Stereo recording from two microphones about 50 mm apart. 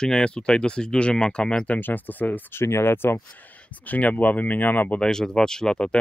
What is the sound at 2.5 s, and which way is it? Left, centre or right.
Speech, left.